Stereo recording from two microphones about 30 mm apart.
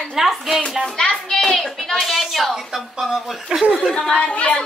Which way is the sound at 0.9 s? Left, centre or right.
Left.